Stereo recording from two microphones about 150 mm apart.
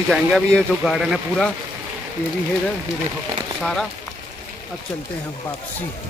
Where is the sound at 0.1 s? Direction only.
Centre (ahead or behind).